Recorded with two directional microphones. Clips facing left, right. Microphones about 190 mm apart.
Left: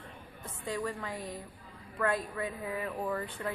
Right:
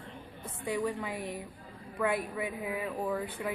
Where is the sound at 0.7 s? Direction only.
10° right (ahead or behind).